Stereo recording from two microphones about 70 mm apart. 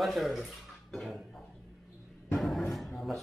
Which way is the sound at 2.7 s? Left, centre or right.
Centre.